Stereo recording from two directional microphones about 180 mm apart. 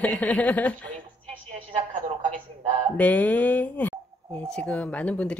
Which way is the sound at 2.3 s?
40° right (ahead or behind).